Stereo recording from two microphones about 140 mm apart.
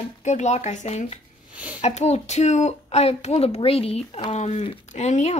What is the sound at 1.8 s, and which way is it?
Speech, 50° left (ahead or behind).